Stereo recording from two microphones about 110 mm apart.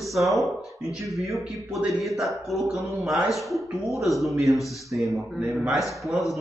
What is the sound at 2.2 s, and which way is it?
A man's voice, centre (ahead or behind).